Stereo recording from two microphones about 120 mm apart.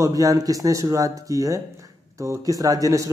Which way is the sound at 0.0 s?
30° right (ahead or behind).